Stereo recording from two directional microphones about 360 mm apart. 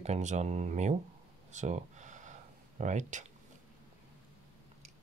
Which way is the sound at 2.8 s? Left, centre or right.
Centre.